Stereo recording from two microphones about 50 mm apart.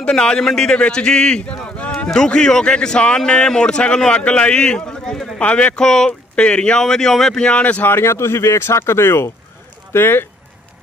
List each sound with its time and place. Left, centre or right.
0.0 s a man's voice: centre
5.9 s a man's voice: centre
7.4 s a man's voice: left
7.8 s speech: left
9.9 s speech: left